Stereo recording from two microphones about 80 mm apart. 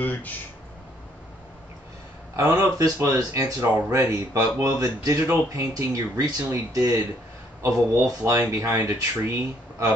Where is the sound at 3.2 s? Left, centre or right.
Right.